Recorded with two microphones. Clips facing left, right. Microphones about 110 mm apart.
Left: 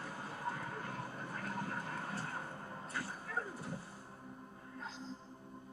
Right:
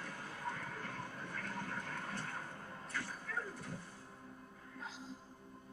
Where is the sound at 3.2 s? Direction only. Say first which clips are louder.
Left 2 dB; 30° left (ahead or behind).